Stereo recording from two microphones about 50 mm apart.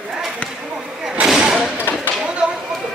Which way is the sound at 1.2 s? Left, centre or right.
Centre.